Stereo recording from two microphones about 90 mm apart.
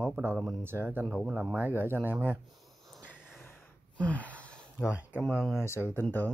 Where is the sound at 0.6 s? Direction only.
25° right (ahead or behind).